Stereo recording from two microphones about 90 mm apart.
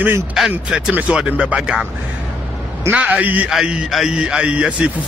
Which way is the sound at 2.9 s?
15° right (ahead or behind).